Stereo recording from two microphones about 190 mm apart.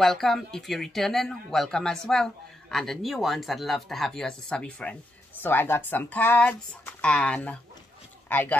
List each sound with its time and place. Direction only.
0.0 s speech: centre (ahead or behind)